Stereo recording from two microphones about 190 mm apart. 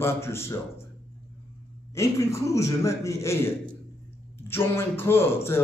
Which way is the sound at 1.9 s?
15° left (ahead or behind).